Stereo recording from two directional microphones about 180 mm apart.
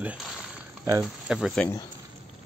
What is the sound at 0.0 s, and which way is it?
Speech, 5° right (ahead or behind).